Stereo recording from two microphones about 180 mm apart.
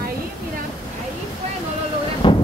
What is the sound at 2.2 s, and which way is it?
Train, 30° left (ahead or behind).